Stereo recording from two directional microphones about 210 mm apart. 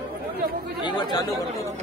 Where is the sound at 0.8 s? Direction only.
20° left (ahead or behind).